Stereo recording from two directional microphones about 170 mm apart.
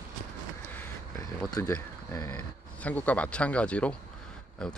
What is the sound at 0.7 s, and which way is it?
Vehicle, 15° left (ahead or behind).